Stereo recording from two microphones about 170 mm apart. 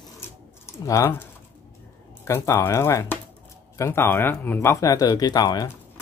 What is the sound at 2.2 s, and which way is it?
Speech, 15° left (ahead or behind).